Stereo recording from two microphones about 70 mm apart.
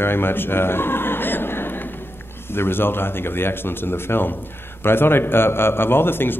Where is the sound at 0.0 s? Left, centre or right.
Left.